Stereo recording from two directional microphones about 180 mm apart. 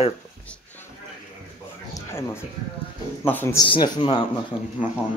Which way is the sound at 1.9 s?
15° left (ahead or behind).